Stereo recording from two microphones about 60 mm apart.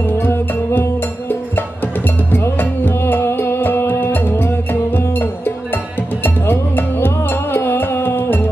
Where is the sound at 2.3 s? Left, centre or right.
Left.